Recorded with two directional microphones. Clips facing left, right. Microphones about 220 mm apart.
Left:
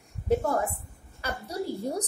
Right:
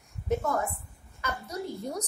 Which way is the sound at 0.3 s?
30° left (ahead or behind).